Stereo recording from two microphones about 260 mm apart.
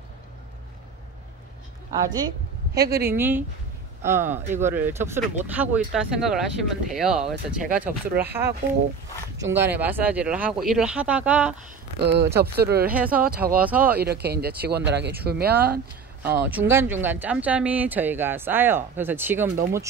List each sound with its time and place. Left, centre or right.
1.9 s speech: centre
2.7 s speech: right
3.2 s speech: centre
12.0 s speech: right
12.9 s speech: centre
13.2 s speech: right
13.7 s speech: centre
13.9 s speech: right
16.2 s speech: centre